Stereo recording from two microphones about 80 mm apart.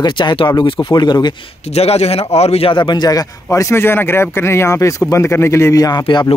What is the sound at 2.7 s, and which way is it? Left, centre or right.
Speech, left.